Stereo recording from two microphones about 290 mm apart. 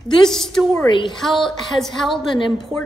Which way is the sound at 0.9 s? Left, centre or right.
Centre.